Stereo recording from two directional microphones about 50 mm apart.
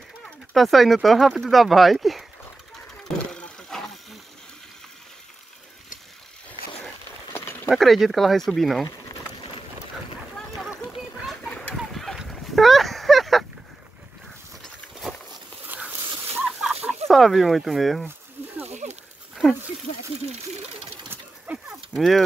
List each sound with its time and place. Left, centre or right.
0.6 s speech: centre
3.7 s hiss: centre
7.3 s a sound: left
7.7 s speech: centre
11.4 s a sound: left
11.7 s fowl: centre
12.3 s a sound: centre
16.4 s fowl: centre
17.1 s speech: centre
21.5 s livestock: right
21.9 s speech: centre